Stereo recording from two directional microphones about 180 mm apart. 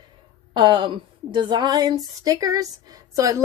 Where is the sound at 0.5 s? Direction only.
25° right (ahead or behind).